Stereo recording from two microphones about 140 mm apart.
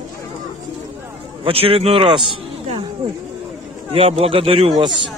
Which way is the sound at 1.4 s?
45° right (ahead or behind).